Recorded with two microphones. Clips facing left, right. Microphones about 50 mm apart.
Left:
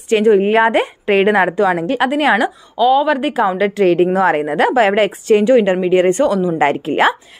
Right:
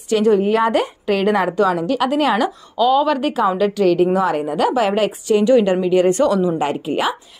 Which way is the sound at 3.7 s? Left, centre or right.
Left.